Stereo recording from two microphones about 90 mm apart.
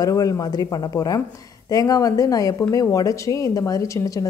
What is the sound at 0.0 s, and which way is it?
A woman's voice, 40° left (ahead or behind).